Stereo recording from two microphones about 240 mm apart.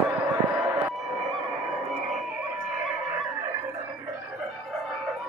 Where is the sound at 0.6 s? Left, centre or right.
Centre.